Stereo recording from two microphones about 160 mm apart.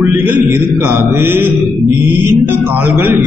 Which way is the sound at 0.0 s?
10° right (ahead or behind).